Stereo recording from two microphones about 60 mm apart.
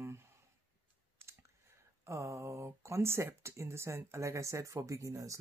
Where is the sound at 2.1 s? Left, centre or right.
Right.